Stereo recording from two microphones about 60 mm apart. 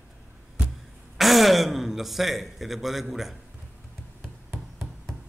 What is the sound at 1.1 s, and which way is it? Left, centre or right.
Speech, centre.